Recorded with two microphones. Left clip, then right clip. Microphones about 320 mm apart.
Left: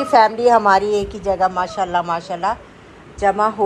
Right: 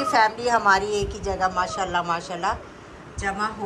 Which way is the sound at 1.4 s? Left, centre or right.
Centre.